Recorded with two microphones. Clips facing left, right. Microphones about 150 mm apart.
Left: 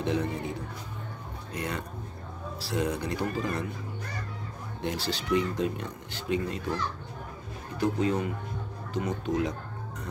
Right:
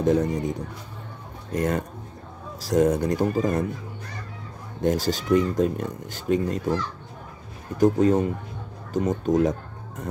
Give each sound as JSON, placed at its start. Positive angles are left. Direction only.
{"t": 0.0, "sound": "speech", "side_deg": -40}
{"t": 1.5, "sound": "speech", "side_deg": -45}
{"t": 4.8, "sound": "speech", "side_deg": -45}